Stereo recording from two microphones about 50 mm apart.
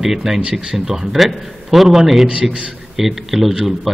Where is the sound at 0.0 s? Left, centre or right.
Centre.